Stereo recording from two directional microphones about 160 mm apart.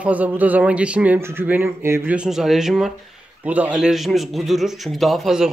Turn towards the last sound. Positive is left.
turn(degrees=0)  # may be behind; listen again after turning